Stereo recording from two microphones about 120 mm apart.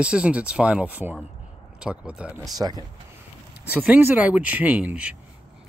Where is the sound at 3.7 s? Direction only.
10° right (ahead or behind).